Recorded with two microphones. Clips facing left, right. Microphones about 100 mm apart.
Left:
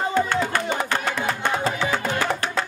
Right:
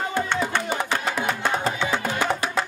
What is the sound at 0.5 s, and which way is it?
Music, centre (ahead or behind).